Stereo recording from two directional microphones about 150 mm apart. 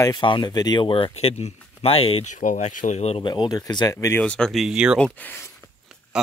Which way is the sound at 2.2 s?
55° left (ahead or behind).